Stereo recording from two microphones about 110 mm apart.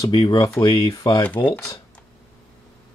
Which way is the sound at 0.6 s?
50° left (ahead or behind).